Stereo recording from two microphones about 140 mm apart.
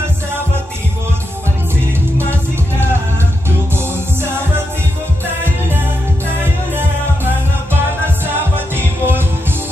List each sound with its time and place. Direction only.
3.4 s music: 15° right (ahead or behind)
8.7 s music: 15° right (ahead or behind)